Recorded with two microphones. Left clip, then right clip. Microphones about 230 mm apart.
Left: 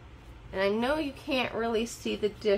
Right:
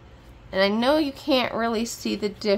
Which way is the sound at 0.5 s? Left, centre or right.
Right.